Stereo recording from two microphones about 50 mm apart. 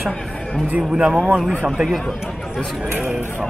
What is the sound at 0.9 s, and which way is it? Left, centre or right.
Speech, centre.